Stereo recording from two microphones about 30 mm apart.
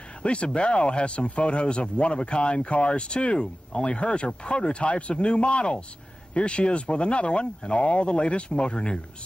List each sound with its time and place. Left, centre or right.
0.2 s speech: left